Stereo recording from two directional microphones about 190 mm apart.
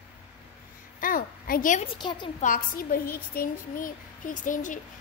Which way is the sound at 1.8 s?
25° left (ahead or behind).